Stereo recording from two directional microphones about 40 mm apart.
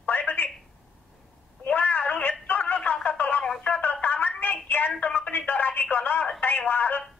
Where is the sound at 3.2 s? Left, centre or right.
Left.